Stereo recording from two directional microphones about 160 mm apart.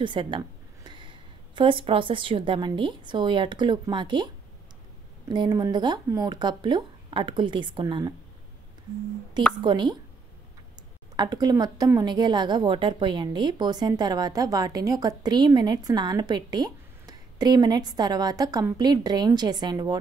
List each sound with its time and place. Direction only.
0.0 s a woman's voice: 30° right (ahead or behind)
5.3 s a woman's voice: 25° right (ahead or behind)
9.6 s a woman's voice: 30° right (ahead or behind)
11.1 s a woman's voice: 25° right (ahead or behind)